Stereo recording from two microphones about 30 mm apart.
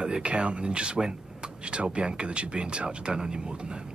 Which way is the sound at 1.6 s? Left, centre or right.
Right.